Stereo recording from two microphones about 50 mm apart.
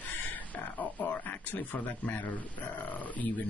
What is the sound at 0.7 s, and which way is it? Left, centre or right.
Speech, left.